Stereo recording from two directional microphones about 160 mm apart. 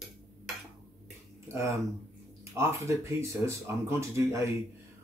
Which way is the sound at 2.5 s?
15° right (ahead or behind).